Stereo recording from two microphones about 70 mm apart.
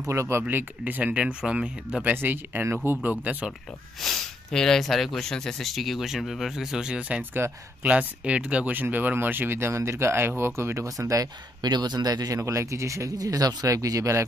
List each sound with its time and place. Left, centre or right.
0.0 s speech: right; by 2.0 s centre
2.1 s speech: right
4.0 s speech: centre; by 11.2 s right
11.6 s speech: right
12.4 s speech: right
13.7 s speech: right